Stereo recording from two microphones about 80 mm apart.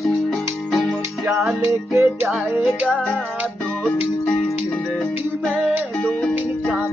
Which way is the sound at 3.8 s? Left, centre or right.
Centre.